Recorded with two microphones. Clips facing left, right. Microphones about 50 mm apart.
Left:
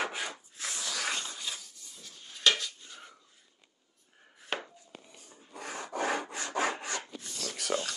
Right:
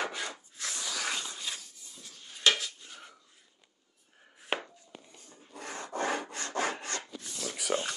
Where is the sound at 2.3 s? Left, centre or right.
Centre.